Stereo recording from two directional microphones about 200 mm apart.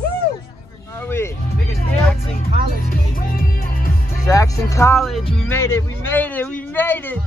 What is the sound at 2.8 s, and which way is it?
Music, 45° left (ahead or behind).